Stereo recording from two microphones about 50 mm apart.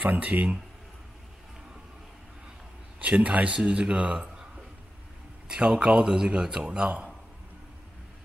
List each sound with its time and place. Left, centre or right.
0.0 s speech: right
3.0 s speech: right
5.5 s speech: centre